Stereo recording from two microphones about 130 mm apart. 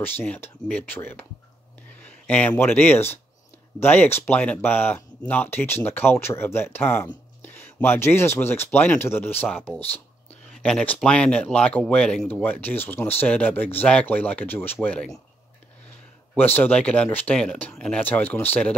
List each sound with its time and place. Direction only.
0.0 s speech: 15° left (ahead or behind)
16.3 s speech: 15° left (ahead or behind)